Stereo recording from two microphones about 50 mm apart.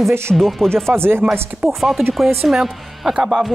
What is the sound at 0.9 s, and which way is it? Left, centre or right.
Speech, right.